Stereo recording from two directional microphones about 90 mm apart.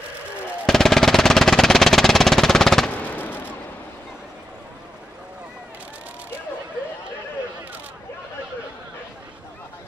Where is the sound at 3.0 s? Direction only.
20° left (ahead or behind).